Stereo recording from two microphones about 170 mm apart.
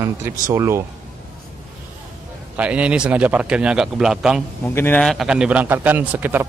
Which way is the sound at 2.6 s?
5° right (ahead or behind).